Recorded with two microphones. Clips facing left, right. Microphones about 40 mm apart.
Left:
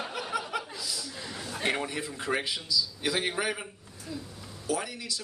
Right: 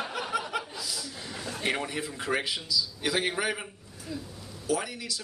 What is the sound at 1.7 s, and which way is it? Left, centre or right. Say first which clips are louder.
A man's voice: even; centre.